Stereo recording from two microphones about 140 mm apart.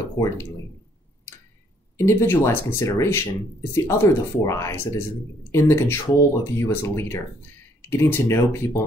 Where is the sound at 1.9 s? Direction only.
20° left (ahead or behind).